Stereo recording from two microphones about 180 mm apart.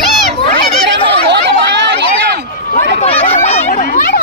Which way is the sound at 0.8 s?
75° right (ahead or behind).